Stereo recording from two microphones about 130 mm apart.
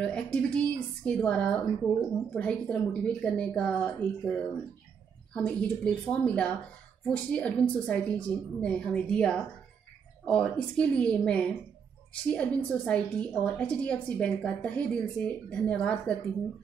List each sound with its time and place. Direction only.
0.0 s a woman's voice: 10° left (ahead or behind)